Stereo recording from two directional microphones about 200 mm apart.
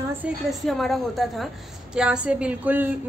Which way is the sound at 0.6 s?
Centre (ahead or behind).